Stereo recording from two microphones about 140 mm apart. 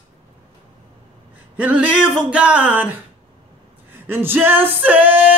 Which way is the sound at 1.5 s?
10° right (ahead or behind).